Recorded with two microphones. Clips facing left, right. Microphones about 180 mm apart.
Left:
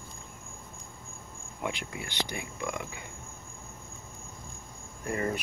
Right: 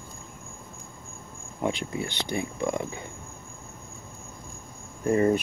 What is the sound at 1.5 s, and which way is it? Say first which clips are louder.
Speech: right 7 dB; 30° right (ahead or behind).